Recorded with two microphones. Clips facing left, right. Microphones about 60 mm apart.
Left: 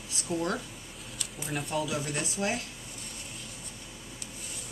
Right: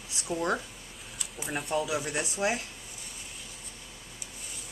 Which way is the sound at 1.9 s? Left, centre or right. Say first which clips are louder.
Right 2 dB; centre.